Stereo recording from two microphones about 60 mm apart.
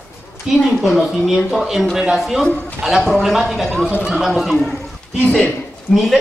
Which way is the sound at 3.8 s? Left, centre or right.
Centre.